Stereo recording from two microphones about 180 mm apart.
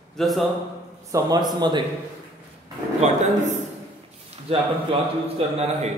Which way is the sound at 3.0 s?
40° right (ahead or behind).